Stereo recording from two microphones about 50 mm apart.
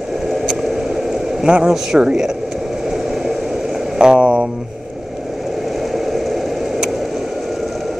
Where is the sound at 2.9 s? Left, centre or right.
Centre.